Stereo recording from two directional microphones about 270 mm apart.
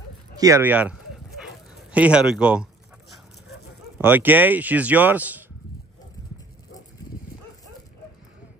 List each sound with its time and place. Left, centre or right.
0.4 s speech: centre
1.9 s a sound: centre
4.0 s speech: centre